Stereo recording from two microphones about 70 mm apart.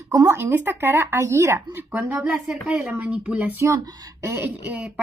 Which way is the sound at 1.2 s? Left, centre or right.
Right.